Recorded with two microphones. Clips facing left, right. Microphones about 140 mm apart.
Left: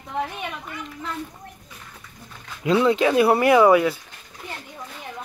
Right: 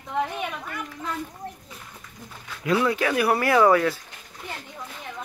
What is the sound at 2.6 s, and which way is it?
Speech, 25° left (ahead or behind).